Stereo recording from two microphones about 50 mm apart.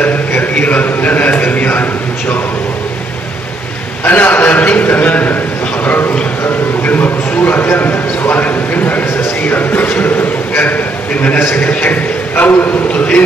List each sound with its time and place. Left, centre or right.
0.0 s a man's voice: left
4.0 s a man's voice: left
11.6 s a man's voice: left